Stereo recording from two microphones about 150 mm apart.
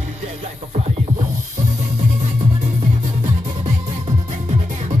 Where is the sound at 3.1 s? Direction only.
50° right (ahead or behind).